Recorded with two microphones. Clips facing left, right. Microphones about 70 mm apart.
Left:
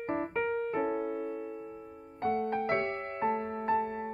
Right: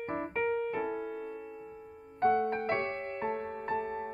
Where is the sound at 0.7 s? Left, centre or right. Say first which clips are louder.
Left 3 dB; left.